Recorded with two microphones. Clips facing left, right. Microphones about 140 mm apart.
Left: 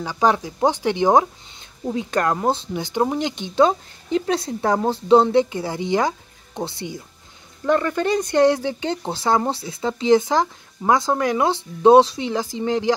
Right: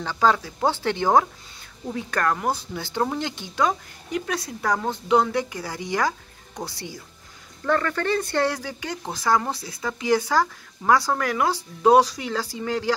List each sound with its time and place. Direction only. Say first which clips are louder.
0.0 s speech: left 2 dB; 15° left (ahead or behind)